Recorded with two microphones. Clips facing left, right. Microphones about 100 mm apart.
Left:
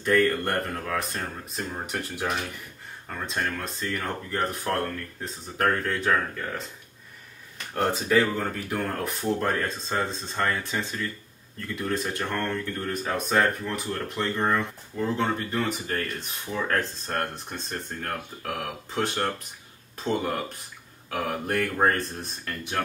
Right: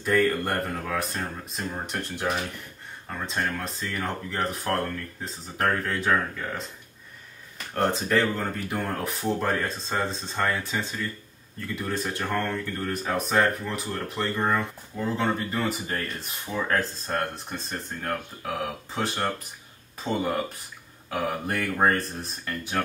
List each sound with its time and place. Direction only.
0.0 s speech: centre (ahead or behind)